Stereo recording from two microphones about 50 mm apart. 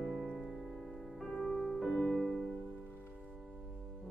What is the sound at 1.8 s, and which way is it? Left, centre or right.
Music, centre.